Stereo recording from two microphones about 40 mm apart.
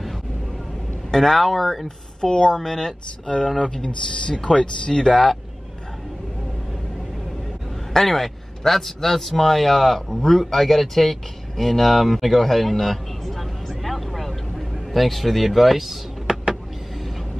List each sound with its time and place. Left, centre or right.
1.1 s speech: centre
2.2 s speech: centre
7.9 s a man's voice: centre
16.3 s vehicle: centre